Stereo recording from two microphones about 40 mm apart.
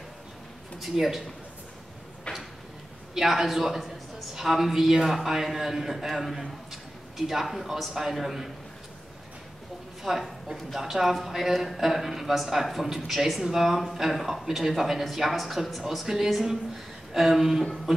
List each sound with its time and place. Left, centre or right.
0.7 s speech: centre
2.3 s a sound: left
3.2 s a man's voice: centre
10.0 s a man's voice: centre